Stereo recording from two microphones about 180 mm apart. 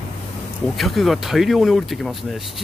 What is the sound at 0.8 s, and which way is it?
Speech, centre (ahead or behind).